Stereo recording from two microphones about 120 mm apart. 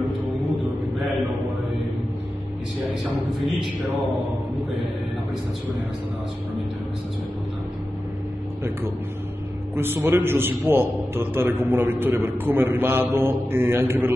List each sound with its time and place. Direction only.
9.8 s a man's voice: 20° right (ahead or behind)